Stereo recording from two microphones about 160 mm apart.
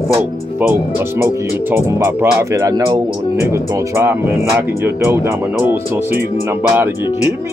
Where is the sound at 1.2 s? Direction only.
15° right (ahead or behind).